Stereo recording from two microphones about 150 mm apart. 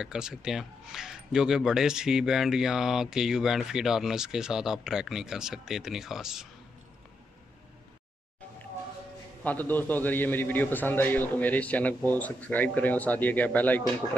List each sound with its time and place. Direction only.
0.0 s speech: 5° right (ahead or behind)
9.4 s a man's voice: 10° left (ahead or behind)